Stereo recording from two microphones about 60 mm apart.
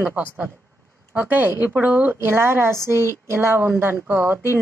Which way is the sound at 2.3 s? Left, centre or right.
Right.